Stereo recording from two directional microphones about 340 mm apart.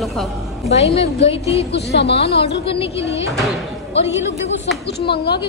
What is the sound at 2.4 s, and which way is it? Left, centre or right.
Speech, centre.